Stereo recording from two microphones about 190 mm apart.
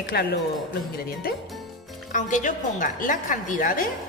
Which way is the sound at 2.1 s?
40° left (ahead or behind).